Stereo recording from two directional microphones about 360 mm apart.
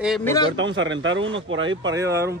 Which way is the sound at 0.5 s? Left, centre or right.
Right.